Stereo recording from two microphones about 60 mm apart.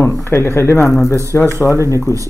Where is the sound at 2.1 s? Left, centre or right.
Left.